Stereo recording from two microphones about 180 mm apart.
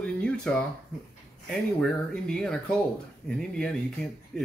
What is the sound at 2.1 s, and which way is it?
Speech, 5° left (ahead or behind).